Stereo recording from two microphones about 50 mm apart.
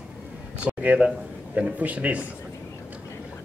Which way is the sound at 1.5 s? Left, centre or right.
Right.